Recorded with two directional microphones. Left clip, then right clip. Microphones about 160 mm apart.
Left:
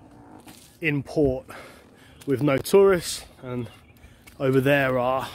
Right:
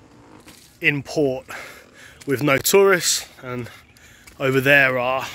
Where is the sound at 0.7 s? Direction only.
5° left (ahead or behind).